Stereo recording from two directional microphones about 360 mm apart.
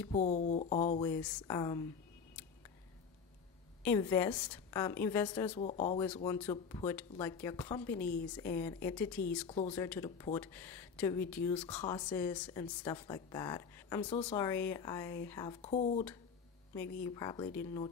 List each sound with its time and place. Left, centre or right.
0.1 s speech: centre
3.8 s speech: centre
5.6 s speech: centre
6.1 s speech: centre
9.5 s speech: centre
17.0 s speech: centre